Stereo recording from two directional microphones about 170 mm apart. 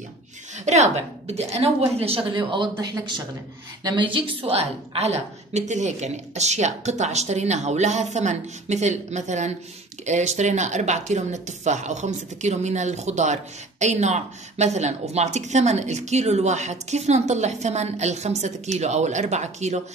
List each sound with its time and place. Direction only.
0.7 s a woman's voice: 40° right (ahead or behind)